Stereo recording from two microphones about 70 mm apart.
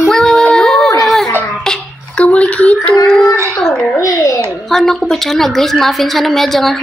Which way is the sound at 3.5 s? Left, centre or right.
Centre.